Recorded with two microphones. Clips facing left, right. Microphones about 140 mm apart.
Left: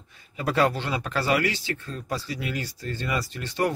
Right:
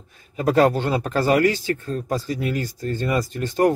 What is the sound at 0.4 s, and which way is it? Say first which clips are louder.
Speech: right 6 dB; 45° right (ahead or behind).